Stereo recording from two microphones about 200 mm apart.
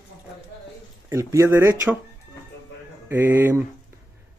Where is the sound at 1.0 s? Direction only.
15° right (ahead or behind).